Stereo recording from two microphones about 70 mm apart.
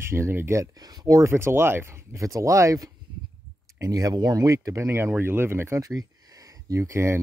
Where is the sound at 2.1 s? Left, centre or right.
Right.